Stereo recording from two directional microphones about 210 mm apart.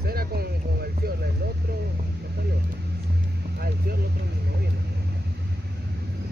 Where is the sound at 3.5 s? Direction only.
45° right (ahead or behind).